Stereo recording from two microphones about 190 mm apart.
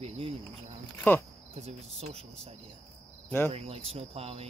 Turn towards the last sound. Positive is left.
turn(degrees=-30)  # may be behind; listen again after turning